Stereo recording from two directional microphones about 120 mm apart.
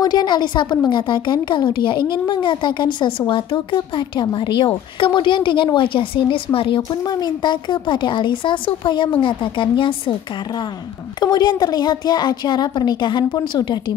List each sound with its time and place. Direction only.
0.0 s a woman's voice: 35° left (ahead or behind)
11.1 s a woman's voice: 35° left (ahead or behind)